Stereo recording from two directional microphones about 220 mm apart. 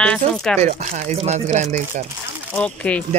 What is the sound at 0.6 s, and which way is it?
Speech, 30° right (ahead or behind).